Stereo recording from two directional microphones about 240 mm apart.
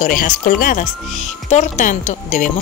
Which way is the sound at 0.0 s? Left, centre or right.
Left.